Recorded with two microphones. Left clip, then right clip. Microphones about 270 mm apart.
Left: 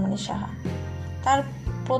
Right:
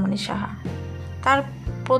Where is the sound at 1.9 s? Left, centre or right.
Right.